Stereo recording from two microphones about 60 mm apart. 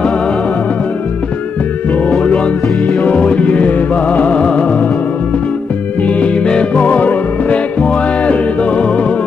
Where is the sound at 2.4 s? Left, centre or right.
Centre.